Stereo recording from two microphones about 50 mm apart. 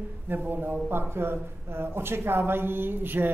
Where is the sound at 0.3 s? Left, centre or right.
Right.